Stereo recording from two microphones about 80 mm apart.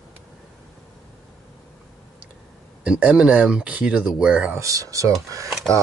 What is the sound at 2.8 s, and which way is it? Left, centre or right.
Speech, centre.